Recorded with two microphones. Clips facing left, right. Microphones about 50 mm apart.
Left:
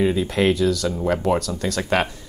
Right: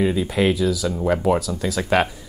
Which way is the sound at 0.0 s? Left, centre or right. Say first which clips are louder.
Even; centre.